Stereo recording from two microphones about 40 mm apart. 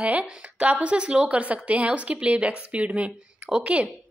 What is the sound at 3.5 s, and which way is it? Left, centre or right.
Speech, right.